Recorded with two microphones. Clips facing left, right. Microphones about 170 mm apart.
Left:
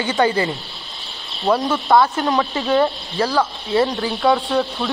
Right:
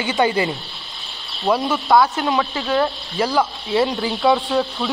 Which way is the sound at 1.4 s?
Centre (ahead or behind).